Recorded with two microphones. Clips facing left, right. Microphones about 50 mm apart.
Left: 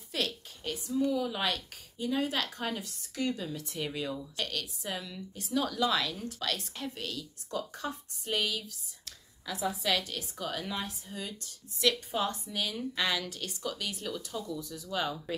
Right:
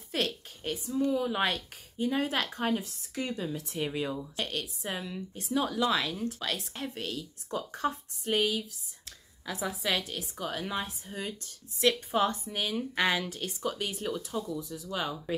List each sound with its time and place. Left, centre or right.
0.1 s a woman's voice: right
2.8 s speech: centre
6.7 s speech: right
8.4 s speech: centre
10.6 s speech: right
14.6 s speech: centre